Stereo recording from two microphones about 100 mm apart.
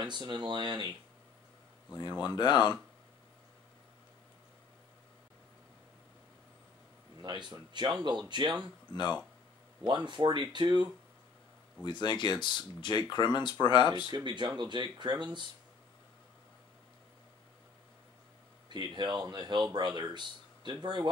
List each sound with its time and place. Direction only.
0.0 s speech: 50° right (ahead or behind)
2.0 s speech: 45° left (ahead or behind)
7.2 s speech: 50° right (ahead or behind)
8.9 s speech: 45° left (ahead or behind)
9.8 s speech: 50° right (ahead or behind)
11.8 s speech: 50° left (ahead or behind)
14.1 s speech: 50° right (ahead or behind)
18.7 s speech: 50° right (ahead or behind)